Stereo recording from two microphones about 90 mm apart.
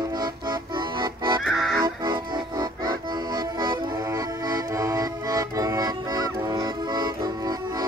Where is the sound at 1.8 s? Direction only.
55° right (ahead or behind).